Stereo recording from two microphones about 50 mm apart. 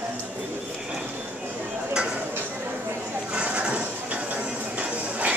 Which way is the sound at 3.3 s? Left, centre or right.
Right.